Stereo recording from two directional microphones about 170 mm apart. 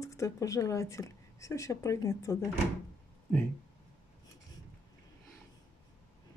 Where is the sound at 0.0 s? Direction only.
20° left (ahead or behind).